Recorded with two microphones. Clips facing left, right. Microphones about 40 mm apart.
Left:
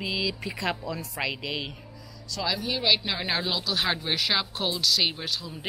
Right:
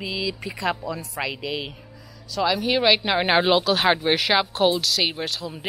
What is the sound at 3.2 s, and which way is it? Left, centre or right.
Speech, right.